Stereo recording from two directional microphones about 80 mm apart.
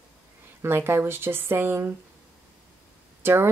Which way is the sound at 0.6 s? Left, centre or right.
Right.